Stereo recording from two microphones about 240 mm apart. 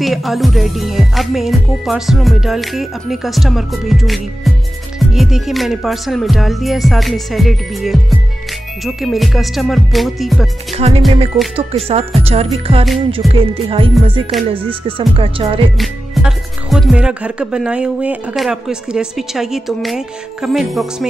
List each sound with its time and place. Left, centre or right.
0.0 s speech: centre
10.7 s speech: right
15.8 s speech: centre